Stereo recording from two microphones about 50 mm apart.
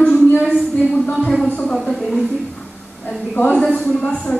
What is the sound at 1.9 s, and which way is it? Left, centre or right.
Speech, centre.